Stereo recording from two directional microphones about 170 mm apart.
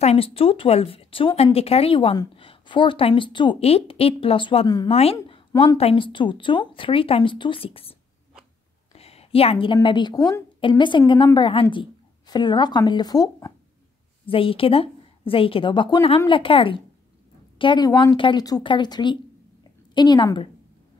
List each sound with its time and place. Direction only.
0.0 s speech: 35° left (ahead or behind)
5.3 s a sound: 25° left (ahead or behind)
5.8 s speech: 30° left (ahead or behind)
8.9 s a sound: 35° left (ahead or behind)
9.8 s a woman's voice: 25° left (ahead or behind)
14.2 s a woman's voice: 30° left (ahead or behind)